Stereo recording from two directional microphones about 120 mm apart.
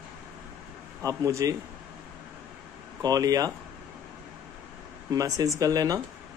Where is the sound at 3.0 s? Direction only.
30° right (ahead or behind).